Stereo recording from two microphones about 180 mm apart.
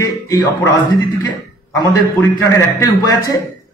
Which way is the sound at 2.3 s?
15° left (ahead or behind).